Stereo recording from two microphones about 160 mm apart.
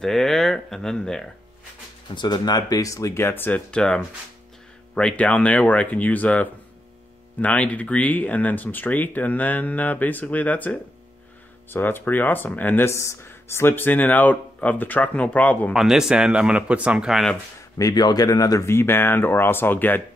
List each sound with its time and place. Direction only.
0.0 s a sound: centre (ahead or behind)
2.1 s speech: 25° left (ahead or behind); by 15.7 s 10° left (ahead or behind)
15.7 s speech: 5° right (ahead or behind)
17.7 s speech: 20° left (ahead or behind)